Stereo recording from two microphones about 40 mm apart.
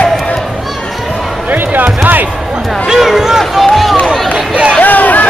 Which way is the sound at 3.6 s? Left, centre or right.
Centre.